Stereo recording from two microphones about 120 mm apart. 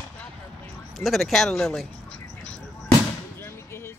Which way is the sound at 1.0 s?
Centre (ahead or behind).